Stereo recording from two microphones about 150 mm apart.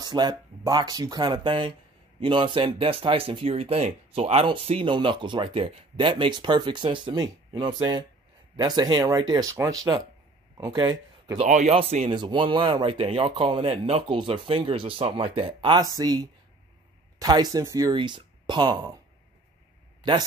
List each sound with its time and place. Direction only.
0.0 s speech: 30° right (ahead or behind)
11.4 s speech: 55° right (ahead or behind)
11.7 s speech: 40° right (ahead or behind); by 17.9 s 20° right (ahead or behind)
17.9 s speech: 30° right (ahead or behind)
20.0 s speech: 30° right (ahead or behind)